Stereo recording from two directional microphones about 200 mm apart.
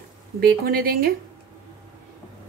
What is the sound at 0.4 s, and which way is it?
Speech, 50° right (ahead or behind).